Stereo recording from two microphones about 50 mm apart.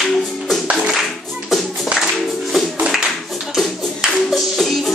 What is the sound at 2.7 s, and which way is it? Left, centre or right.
Clapping, centre.